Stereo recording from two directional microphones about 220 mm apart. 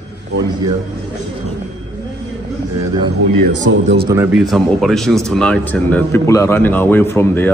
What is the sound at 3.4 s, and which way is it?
Speech, 45° right (ahead or behind).